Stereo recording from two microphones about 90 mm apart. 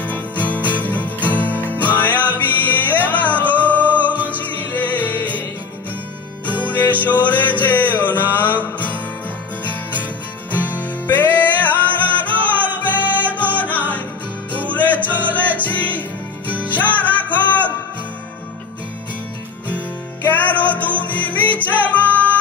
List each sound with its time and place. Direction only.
0.0 s music: 15° left (ahead or behind)
6.6 s music: 20° left (ahead or behind)
10.7 s music: 20° left (ahead or behind)
12.8 s music: 20° right (ahead or behind)
13.6 s music: 20° left (ahead or behind)
20.2 s music: 20° left (ahead or behind)